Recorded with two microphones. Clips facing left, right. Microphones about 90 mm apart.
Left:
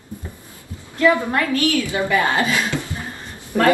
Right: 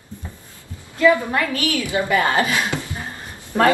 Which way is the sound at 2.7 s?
15° right (ahead or behind).